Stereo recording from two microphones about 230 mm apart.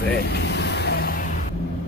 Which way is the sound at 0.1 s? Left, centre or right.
Left.